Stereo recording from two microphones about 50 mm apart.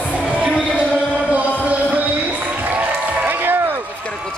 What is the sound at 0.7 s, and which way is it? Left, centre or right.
Music, right.